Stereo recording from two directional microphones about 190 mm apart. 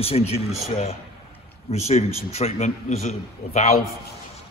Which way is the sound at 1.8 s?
35° left (ahead or behind).